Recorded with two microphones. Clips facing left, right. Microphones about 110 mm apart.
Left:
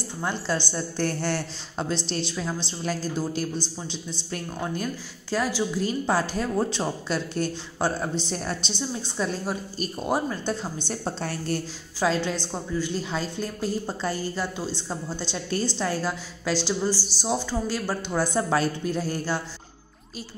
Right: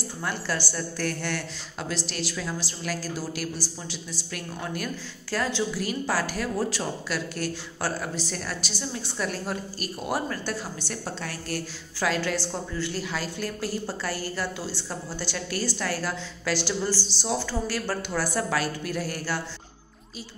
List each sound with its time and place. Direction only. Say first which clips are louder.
0.2 s a woman's voice: left 3 dB; 20° left (ahead or behind)